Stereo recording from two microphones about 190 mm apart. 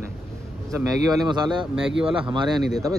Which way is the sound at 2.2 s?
25° right (ahead or behind).